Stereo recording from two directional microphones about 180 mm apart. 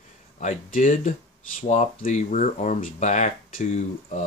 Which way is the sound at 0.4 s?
45° left (ahead or behind).